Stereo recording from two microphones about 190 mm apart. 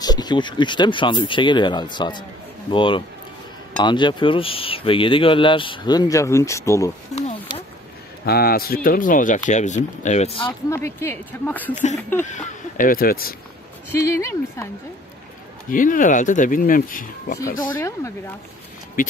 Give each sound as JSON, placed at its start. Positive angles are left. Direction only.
{"t": 0.0, "sound": "speech", "side_deg": 20}
{"t": 7.2, "sound": "a sound", "side_deg": 30}
{"t": 8.3, "sound": "speech", "side_deg": 55}
{"t": 10.7, "sound": "speech", "side_deg": 15}
{"t": 12.3, "sound": "speech", "side_deg": 45}
{"t": 13.9, "sound": "speech", "side_deg": 15}
{"t": 15.7, "sound": "speech", "side_deg": 45}
{"t": 17.7, "sound": "speech", "side_deg": 15}
{"t": 19.0, "sound": "speech", "side_deg": 50}